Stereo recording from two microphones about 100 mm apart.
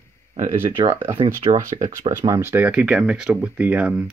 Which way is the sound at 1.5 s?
60° right (ahead or behind).